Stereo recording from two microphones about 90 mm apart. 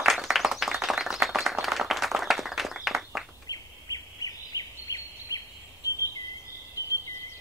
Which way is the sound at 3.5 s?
45° left (ahead or behind).